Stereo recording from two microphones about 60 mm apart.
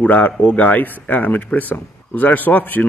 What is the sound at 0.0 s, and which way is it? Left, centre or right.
Speech, left.